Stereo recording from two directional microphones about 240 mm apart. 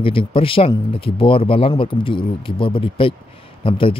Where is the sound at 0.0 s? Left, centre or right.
Left.